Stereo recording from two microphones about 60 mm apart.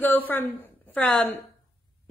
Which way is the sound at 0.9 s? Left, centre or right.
Left.